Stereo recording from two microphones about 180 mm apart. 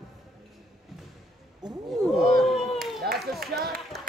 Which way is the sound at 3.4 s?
60° right (ahead or behind).